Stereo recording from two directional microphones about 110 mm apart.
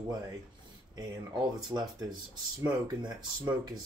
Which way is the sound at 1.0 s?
35° right (ahead or behind).